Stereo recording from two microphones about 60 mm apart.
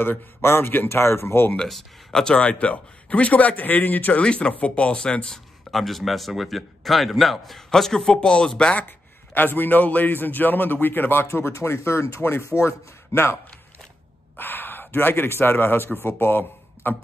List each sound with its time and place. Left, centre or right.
0.0 s speech: left
1.7 s speech: centre; by 4.2 s left
4.2 s speech: centre
5.3 s speech: centre
8.8 s a man's voice: left
11.2 s speech: left
14.3 s speech: left